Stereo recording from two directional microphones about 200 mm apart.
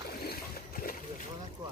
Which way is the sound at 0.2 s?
45° left (ahead or behind).